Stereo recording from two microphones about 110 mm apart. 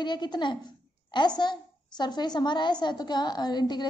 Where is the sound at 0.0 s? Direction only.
40° left (ahead or behind).